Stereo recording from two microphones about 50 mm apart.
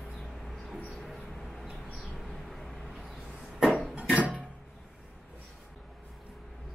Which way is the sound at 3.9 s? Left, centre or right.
Right.